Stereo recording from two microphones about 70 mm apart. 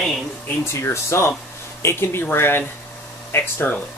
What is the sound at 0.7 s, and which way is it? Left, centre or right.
Speech, left.